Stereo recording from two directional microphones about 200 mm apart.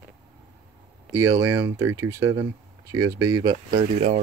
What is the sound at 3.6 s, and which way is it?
Speech, 35° right (ahead or behind).